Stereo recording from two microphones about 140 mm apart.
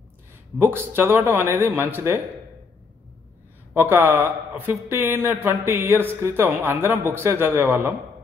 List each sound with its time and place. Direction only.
0.6 s speech: 15° right (ahead or behind)
3.7 s speech: 15° right (ahead or behind)